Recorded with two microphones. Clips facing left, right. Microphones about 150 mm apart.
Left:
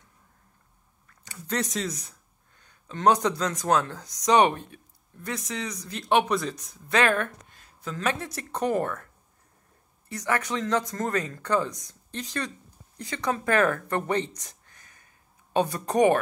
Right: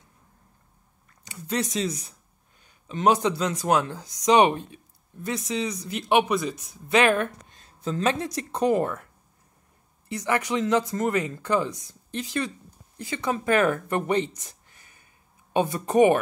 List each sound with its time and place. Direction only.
1.2 s speech: 15° right (ahead or behind)
2.6 s a sound: 10° right (ahead or behind)
3.3 s speech: 10° right (ahead or behind)
6.9 s speech: 20° right (ahead or behind)
15.5 s speech: 5° right (ahead or behind)